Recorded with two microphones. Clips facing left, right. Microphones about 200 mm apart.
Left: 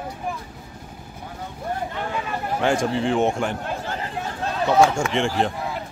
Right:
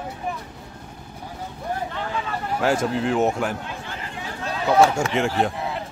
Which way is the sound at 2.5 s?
5° right (ahead or behind).